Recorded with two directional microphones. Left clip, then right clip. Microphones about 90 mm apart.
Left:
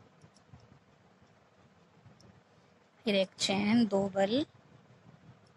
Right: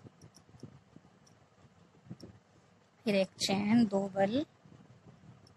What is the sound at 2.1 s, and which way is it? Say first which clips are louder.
Vehicle: right 12 dB; 35° left (ahead or behind).